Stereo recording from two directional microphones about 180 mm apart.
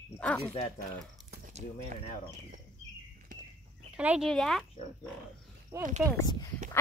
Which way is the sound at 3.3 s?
45° right (ahead or behind).